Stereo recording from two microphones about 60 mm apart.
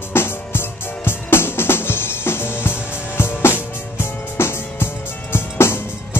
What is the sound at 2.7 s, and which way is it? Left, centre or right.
Music, centre.